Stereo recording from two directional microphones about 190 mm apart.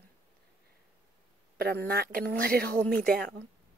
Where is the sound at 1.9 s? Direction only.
50° right (ahead or behind).